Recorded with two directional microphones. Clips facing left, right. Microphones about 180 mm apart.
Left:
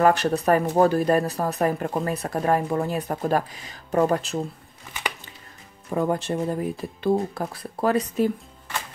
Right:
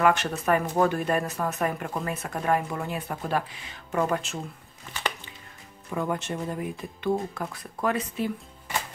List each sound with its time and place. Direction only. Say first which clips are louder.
0.0 s speech: left 4 dB; 35° left (ahead or behind)
5.9 s speech: left 5 dB; 35° left (ahead or behind)